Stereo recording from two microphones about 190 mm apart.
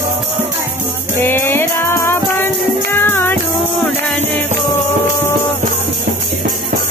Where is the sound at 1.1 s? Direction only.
10° left (ahead or behind).